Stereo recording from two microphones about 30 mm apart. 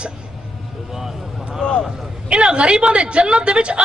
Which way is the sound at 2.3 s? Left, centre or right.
Right.